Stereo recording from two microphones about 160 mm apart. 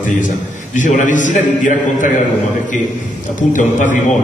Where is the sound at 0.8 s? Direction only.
50° left (ahead or behind).